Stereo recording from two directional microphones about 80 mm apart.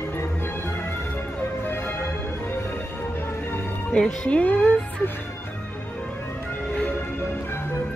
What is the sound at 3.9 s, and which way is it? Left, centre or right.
Speech, centre.